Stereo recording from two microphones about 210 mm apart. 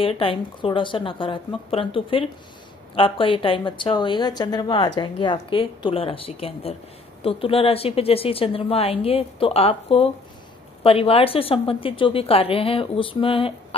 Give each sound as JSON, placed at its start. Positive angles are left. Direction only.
{"t": 0.0, "sound": "a woman's voice", "side_deg": 25}